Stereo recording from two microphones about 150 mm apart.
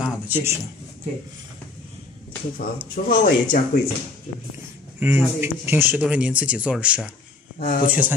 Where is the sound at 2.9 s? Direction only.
70° left (ahead or behind).